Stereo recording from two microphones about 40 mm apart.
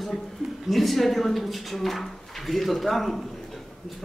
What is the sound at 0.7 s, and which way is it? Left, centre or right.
A man's voice, centre.